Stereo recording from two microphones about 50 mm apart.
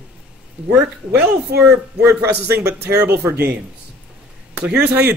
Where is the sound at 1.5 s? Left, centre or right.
Right.